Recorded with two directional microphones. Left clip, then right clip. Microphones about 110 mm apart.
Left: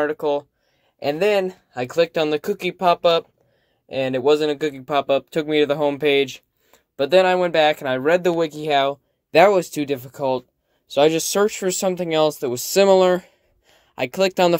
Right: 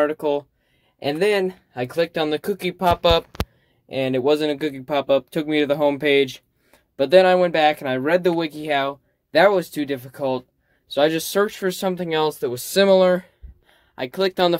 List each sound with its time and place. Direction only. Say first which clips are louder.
0.0 s speech: right 1 dB; 15° left (ahead or behind)
8.5 s speech: left 3 dB; 50° left (ahead or behind)
10.9 s speech: left 2 dB; 65° left (ahead or behind)
13.7 s speech: left 3 dB; 90° left